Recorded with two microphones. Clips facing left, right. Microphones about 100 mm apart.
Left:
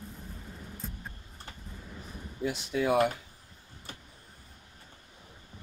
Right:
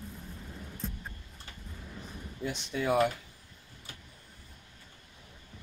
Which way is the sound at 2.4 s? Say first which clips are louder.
Left 4 dB; 5° left (ahead or behind).